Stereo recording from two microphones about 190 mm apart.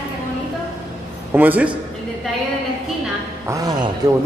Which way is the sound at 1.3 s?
10° right (ahead or behind).